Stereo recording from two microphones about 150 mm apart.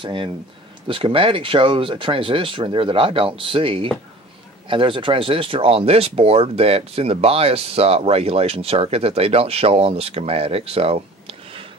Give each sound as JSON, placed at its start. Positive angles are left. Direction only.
{"t": 0.0, "sound": "speech", "side_deg": -35}